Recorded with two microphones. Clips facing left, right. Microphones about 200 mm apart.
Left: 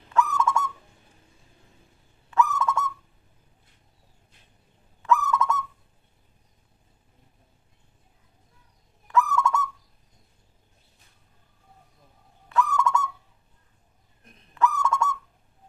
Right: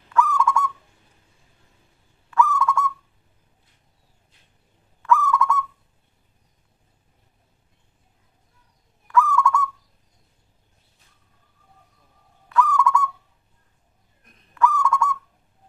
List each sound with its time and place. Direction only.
0.1 s owl: 25° left (ahead or behind)
2.3 s owl: 20° left (ahead or behind)
5.0 s owl: 20° left (ahead or behind)
9.0 s owl: 20° left (ahead or behind)
12.4 s owl: 25° left (ahead or behind)
14.5 s owl: 25° left (ahead or behind)